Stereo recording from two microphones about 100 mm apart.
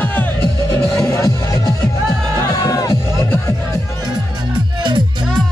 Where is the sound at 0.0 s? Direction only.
20° left (ahead or behind).